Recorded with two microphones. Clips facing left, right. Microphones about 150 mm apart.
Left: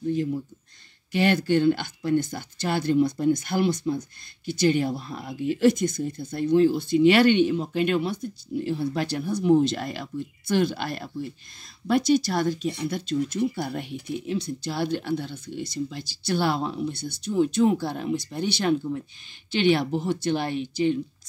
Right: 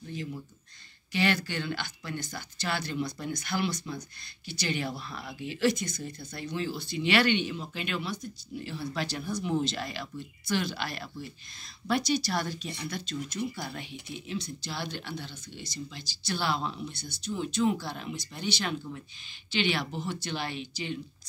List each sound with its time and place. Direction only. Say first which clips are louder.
0.1 s speech: left 10 dB; 50° left (ahead or behind)